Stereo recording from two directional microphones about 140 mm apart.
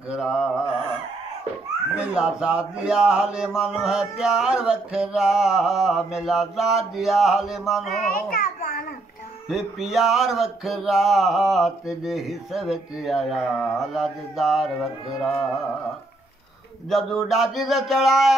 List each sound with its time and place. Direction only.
0.1 s mantra: 5° right (ahead or behind)
2.0 s speech: 5° right (ahead or behind)
8.1 s music: 90° left
9.5 s speech: centre (ahead or behind)
16.9 s speech: centre (ahead or behind)